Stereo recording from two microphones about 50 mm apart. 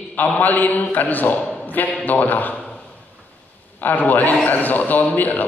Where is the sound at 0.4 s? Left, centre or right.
Left.